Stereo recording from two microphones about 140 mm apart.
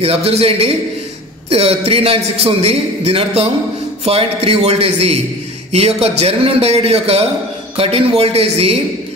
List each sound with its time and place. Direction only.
0.0 s a man's voice: 45° right (ahead or behind)